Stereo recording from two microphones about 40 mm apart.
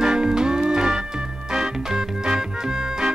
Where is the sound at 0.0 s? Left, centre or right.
Centre.